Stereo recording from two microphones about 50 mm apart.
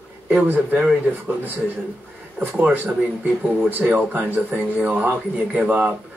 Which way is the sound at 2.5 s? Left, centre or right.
Right.